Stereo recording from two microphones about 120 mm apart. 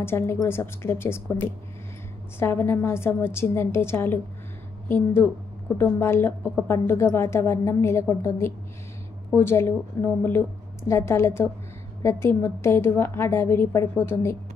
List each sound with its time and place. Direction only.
0.0 s a woman's voice: 20° left (ahead or behind)